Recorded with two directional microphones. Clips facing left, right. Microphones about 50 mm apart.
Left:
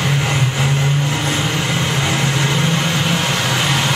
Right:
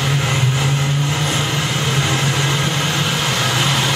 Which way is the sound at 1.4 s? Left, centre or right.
Centre.